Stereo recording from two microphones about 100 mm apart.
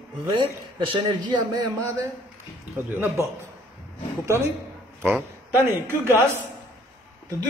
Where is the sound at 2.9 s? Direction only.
25° right (ahead or behind).